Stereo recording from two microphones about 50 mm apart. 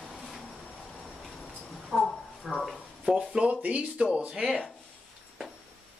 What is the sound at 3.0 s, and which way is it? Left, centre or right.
Speech, centre.